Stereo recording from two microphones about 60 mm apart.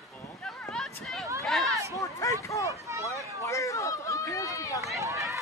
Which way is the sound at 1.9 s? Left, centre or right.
Left.